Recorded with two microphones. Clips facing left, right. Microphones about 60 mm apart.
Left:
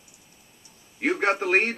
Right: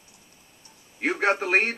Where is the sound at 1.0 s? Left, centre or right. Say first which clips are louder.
Even; centre.